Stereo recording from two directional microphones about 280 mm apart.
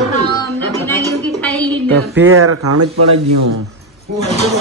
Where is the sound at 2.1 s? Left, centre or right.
Right.